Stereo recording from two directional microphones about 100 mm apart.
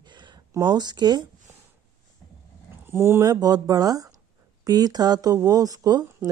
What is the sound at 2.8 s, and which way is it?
Speech, 25° right (ahead or behind).